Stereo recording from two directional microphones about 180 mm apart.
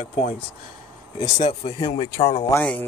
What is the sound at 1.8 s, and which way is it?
Speech, 25° left (ahead or behind).